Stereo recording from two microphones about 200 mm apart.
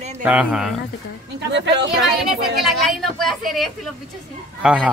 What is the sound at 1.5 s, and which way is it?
Speech, 60° right (ahead or behind).